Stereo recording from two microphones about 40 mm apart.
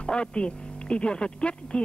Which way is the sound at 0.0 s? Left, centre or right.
Left.